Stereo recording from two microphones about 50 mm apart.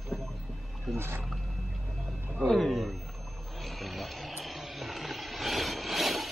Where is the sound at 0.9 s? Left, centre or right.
Right.